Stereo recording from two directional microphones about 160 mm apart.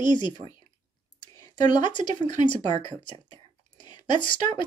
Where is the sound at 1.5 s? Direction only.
30° left (ahead or behind).